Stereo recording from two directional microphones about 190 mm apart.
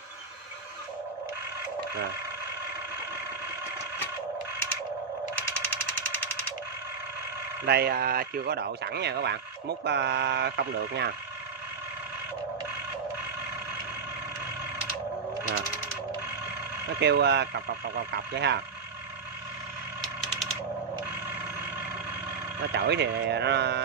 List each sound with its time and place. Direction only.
7.6 s a man's voice: 55° right (ahead or behind)
17.0 s a man's voice: 60° right (ahead or behind)
20.0 s a sound: centre (ahead or behind)
22.8 s a man's voice: 65° right (ahead or behind)